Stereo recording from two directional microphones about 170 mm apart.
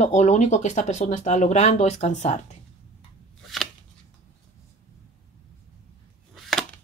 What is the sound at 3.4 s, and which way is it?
Shuffling cards, centre (ahead or behind).